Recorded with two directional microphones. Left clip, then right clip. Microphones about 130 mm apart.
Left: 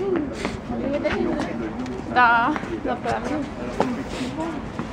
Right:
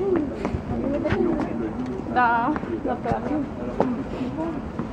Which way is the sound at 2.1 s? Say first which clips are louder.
Left 3 dB; 15° left (ahead or behind).